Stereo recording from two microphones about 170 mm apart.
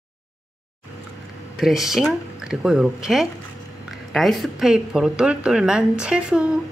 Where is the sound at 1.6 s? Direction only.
Centre (ahead or behind).